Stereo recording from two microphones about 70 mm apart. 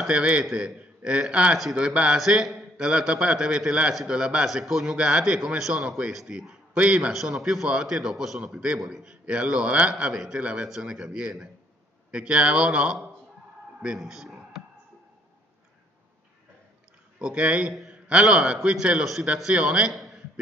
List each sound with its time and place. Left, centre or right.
0.1 s a man's voice: centre
2.1 s a man's voice: centre
7.1 s a man's voice: centre
13.7 s a sound: centre
17.2 s a man's voice: centre
19.9 s a sound: centre